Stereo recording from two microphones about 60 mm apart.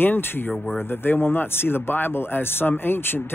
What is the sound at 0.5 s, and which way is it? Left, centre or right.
Speech, centre.